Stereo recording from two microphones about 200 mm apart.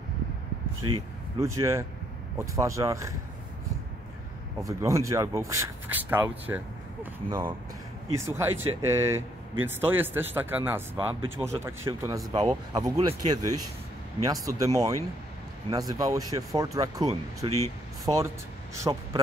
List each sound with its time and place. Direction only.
1.4 s speech: 15° right (ahead or behind)
4.6 s speech: 15° right (ahead or behind)